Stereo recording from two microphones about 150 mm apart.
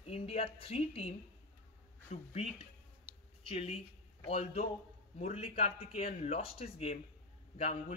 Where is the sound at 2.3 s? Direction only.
45° left (ahead or behind).